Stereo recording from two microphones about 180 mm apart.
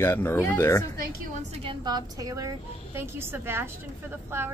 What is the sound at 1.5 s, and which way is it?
A woman's voice, 30° right (ahead or behind).